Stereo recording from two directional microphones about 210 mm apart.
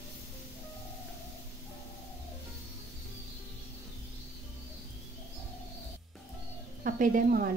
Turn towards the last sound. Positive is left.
turn(degrees=-40)  # may be behind; listen again after turning